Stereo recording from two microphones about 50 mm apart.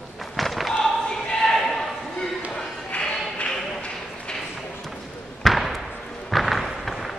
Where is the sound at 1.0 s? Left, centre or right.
Centre.